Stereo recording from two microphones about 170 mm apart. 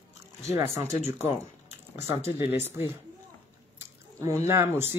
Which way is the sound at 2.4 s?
15° right (ahead or behind).